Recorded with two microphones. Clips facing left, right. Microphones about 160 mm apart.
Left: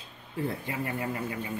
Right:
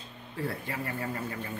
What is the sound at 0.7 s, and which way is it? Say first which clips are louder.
Speech: left 2 dB; 20° left (ahead or behind).